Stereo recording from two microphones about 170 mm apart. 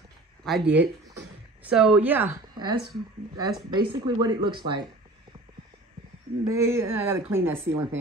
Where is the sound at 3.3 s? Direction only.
25° right (ahead or behind).